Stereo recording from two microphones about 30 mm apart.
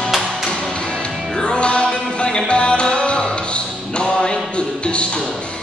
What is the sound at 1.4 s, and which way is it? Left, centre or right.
Music, left.